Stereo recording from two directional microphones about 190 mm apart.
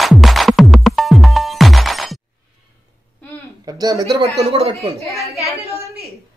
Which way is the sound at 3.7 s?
20° right (ahead or behind).